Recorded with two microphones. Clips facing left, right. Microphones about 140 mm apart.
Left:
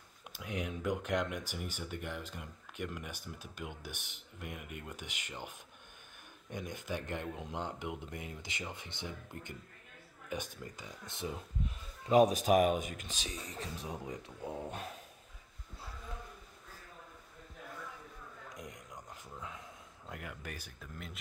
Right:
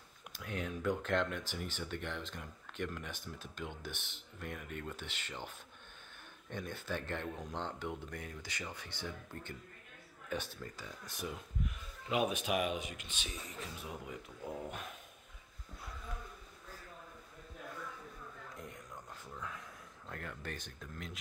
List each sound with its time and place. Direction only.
0.3 s speech: 15° left (ahead or behind)
6.5 s speech: 15° left (ahead or behind); by 15.0 s 35° left (ahead or behind)
19.3 s a sound: 20° left (ahead or behind)
20.1 s speech: 10° left (ahead or behind)